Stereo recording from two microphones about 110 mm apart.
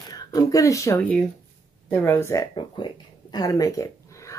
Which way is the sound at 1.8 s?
20° left (ahead or behind).